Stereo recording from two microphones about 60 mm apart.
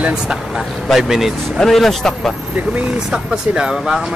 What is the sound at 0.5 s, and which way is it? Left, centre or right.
A man's voice, centre.